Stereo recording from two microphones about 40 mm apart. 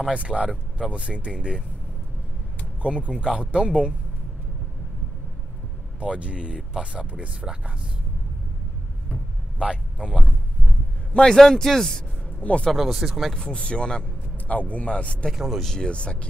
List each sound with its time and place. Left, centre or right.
0.1 s speech: right
2.8 s speech: right
3.1 s speech: centre
5.9 s speech: right
9.6 s speech: right
11.1 s speech: centre
12.4 s a man's voice: left
12.7 s speech: centre
13.3 s speech: centre
14.5 s speech: left
15.3 s speech: centre
15.8 s speech: left